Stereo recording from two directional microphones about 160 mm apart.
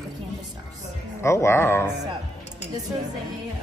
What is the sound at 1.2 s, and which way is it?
Speech, 15° left (ahead or behind).